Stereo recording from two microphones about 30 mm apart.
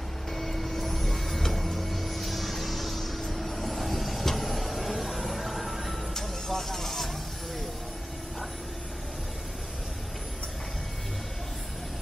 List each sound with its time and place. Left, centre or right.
0.3 s vehicle: centre
6.1 s vehicle: centre